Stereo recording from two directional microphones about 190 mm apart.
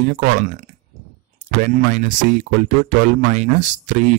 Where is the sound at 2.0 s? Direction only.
45° right (ahead or behind).